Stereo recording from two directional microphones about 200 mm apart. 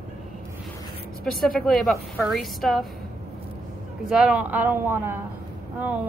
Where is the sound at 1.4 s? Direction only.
Centre (ahead or behind).